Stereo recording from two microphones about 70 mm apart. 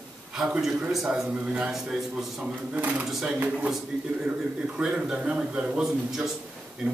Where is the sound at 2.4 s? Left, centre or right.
Right.